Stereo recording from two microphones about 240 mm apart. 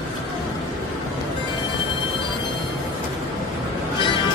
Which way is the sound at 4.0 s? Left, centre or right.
Centre.